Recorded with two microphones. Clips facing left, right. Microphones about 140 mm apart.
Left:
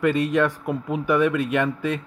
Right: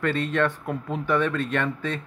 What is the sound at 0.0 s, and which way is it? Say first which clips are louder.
A man's voice: left 4 dB; 10° left (ahead or behind).